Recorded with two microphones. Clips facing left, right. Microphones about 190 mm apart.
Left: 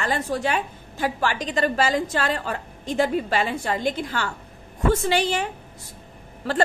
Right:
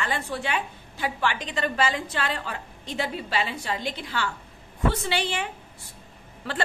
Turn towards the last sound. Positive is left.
turn(degrees=40)  # may be behind; listen again after turning